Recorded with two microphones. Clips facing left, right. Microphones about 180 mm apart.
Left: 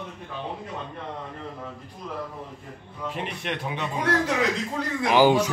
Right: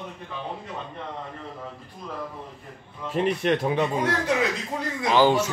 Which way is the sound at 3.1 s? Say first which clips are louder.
Right 10 dB; 40° right (ahead or behind).